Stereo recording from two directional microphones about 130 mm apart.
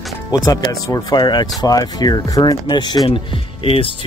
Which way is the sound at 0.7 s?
25° left (ahead or behind).